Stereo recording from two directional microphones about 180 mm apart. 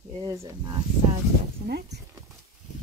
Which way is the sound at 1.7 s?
65° right (ahead or behind).